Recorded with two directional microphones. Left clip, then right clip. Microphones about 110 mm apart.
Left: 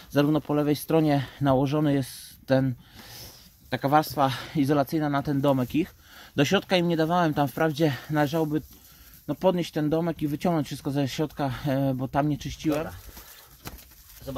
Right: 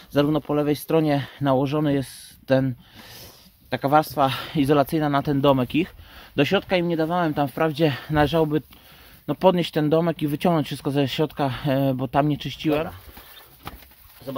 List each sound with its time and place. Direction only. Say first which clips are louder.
0.1 s speech: right 3 dB; centre (ahead or behind); by 5.9 s 30° right (ahead or behind)
6.3 s speech: right 3 dB; 25° left (ahead or behind)
6.6 s speech: right 2 dB; 40° left (ahead or behind)
7.5 s speech: right 3 dB; 5° left (ahead or behind)
7.8 s speech: right 4 dB; 15° right (ahead or behind)
8.1 s speech: right 5 dB; 35° right (ahead or behind)